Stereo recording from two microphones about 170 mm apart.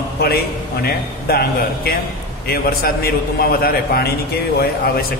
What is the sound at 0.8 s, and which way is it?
A man's voice, 65° left (ahead or behind).